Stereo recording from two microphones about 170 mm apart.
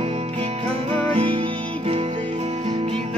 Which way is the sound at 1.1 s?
30° right (ahead or behind).